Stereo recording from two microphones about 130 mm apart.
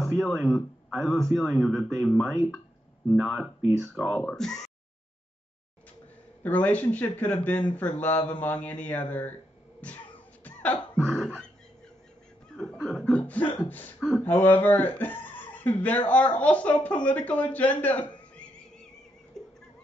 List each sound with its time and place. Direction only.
0.0 s a man's voice: centre (ahead or behind)
6.4 s speech: 10° left (ahead or behind)
9.8 s cough: 10° left (ahead or behind)
11.0 s a man's voice: centre (ahead or behind)
12.4 s a sound: 5° left (ahead or behind)
12.8 s a man's voice: centre (ahead or behind)
13.7 s speech: 15° left (ahead or behind)
13.9 s speech: 5° right (ahead or behind)
14.2 s speech: 15° left (ahead or behind)
19.4 s neigh: 5° left (ahead or behind)